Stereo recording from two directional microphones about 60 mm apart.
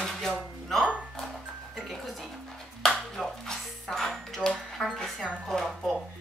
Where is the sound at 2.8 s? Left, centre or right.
Centre.